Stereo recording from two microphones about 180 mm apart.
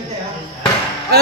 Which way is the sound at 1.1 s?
60° right (ahead or behind).